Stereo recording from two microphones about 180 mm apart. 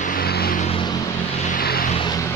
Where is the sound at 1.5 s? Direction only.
55° left (ahead or behind).